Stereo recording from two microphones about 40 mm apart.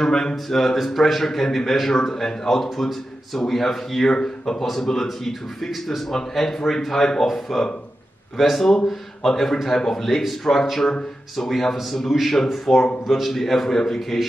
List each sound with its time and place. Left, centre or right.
0.0 s a man's voice: centre
0.7 s a man's voice: centre